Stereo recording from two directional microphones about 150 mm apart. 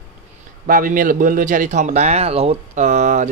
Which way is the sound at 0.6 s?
65° right (ahead or behind).